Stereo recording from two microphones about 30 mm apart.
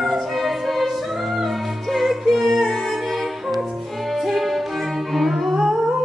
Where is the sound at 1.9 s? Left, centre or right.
Centre.